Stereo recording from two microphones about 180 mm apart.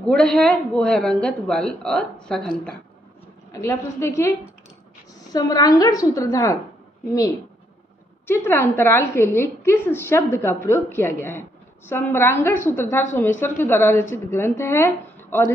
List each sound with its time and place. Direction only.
0.0 s a woman's voice: 5° left (ahead or behind)
3.6 s a woman's voice: 15° left (ahead or behind)